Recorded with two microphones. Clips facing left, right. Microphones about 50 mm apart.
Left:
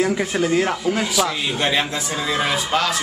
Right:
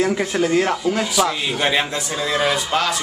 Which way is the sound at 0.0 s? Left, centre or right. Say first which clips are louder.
Right 1 dB; centre.